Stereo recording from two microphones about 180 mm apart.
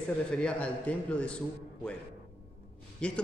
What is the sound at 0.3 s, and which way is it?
A man's voice, 5° left (ahead or behind).